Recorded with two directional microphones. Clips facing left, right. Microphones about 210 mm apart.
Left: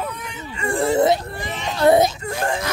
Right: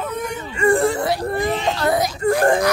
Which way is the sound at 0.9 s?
20° left (ahead or behind).